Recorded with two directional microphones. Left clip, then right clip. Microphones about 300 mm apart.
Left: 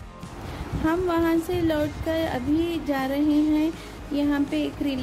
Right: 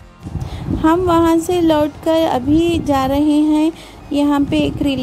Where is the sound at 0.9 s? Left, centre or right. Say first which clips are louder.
Right 10 dB; right.